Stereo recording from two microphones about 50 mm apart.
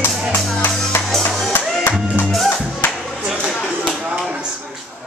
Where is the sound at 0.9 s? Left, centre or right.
Left.